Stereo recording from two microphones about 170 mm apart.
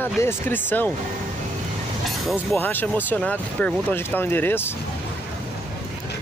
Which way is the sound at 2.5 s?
10° left (ahead or behind).